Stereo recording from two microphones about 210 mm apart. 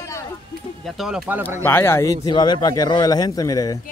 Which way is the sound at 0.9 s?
Centre (ahead or behind).